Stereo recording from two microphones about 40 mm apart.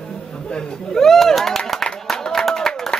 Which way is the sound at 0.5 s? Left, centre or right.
Centre.